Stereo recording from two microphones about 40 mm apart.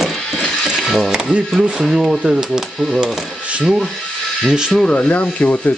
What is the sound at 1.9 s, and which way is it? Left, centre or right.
Speech, centre.